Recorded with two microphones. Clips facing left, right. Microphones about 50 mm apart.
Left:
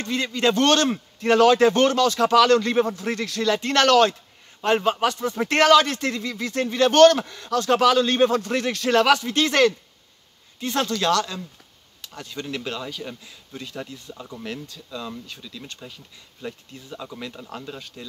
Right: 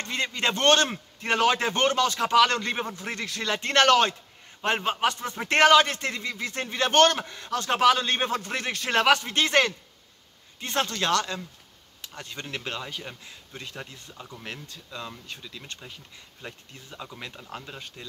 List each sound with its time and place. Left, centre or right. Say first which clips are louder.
0.0 s a man's voice: left 5 dB; right
14.1 s speech: left 6 dB; centre
14.4 s a man's voice: left 6 dB; right